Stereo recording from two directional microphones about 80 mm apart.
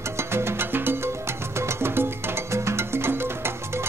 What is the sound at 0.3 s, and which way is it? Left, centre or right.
Music, right.